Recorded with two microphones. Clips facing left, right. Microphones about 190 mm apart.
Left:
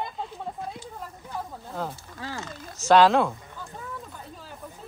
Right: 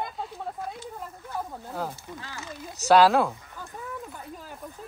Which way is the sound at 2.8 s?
10° right (ahead or behind).